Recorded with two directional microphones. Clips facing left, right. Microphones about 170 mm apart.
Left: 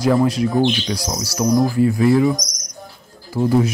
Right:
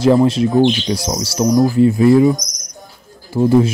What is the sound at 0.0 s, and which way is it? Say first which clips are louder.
Speech: right 4 dB; 25° right (ahead or behind).